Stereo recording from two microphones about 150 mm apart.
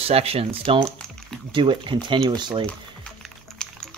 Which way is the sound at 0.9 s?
5° left (ahead or behind).